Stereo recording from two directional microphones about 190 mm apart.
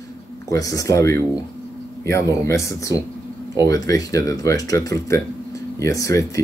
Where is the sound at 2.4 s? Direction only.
15° left (ahead or behind).